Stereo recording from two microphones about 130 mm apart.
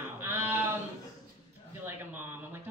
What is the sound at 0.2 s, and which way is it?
Sheep, 15° right (ahead or behind).